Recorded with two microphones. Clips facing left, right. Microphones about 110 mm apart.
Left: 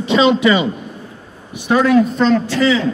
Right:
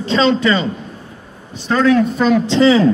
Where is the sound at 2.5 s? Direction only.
30° right (ahead or behind).